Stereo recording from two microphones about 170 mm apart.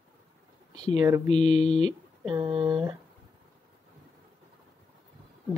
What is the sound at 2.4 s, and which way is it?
Speech, 30° right (ahead or behind).